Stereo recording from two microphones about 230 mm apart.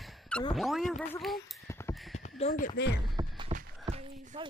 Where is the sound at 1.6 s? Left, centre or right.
Centre.